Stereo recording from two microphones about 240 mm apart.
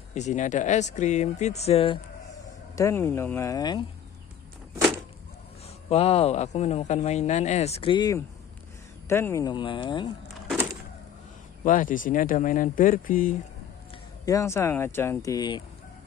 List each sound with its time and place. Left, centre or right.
0.1 s speech: left
2.7 s speech: centre
5.9 s speech: left
11.6 s speech: left
14.2 s speech: centre